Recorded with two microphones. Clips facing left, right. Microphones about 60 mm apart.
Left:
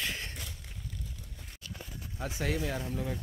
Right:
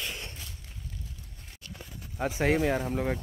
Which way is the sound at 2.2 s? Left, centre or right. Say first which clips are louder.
Right 8 dB; right.